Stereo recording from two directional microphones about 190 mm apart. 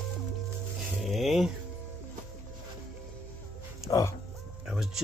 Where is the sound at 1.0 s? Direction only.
Centre (ahead or behind).